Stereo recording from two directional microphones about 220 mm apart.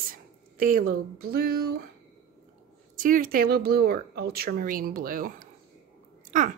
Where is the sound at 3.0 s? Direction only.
40° right (ahead or behind).